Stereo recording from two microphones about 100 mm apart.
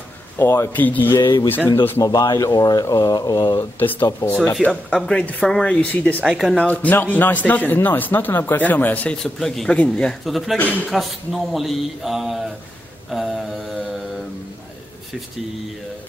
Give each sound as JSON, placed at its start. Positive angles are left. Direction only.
{"t": 0.4, "sound": "a man's voice", "side_deg": 25}
{"t": 1.2, "sound": "speech", "side_deg": 50}
{"t": 4.0, "sound": "speech", "side_deg": 20}
{"t": 4.6, "sound": "speech", "side_deg": 5}
{"t": 6.2, "sound": "speech", "side_deg": 0}
{"t": 6.6, "sound": "speech", "side_deg": 15}
{"t": 9.2, "sound": "speech", "side_deg": 5}
{"t": 13.1, "sound": "mantra", "side_deg": -5}